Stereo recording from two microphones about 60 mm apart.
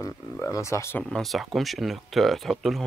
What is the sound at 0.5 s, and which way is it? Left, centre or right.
Speech, left.